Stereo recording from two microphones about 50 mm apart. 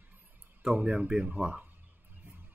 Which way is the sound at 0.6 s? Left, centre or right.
Centre.